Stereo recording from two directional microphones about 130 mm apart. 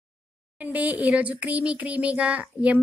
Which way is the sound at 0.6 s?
10° right (ahead or behind).